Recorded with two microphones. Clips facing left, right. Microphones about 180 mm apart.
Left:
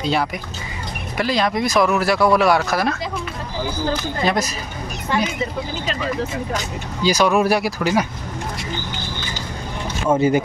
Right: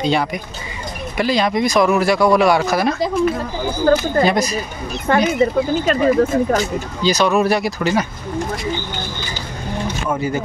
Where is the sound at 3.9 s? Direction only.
50° right (ahead or behind).